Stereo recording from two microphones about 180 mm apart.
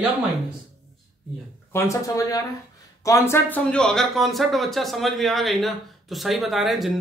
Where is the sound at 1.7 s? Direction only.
15° left (ahead or behind).